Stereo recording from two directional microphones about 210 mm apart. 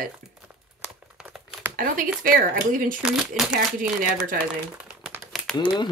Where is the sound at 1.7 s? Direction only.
40° right (ahead or behind).